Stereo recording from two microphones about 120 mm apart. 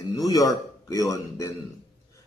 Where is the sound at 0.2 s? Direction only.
30° left (ahead or behind).